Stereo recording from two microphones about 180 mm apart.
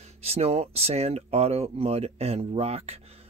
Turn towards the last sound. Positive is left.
turn(degrees=-35)  # may be behind; listen again after turning